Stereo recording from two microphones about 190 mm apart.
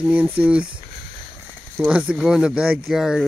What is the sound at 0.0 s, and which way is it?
Speech, 10° right (ahead or behind).